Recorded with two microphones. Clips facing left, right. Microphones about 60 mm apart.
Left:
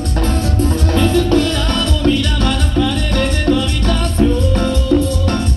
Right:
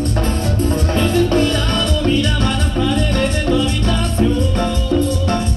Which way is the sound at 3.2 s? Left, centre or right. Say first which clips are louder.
Left 1 dB; left.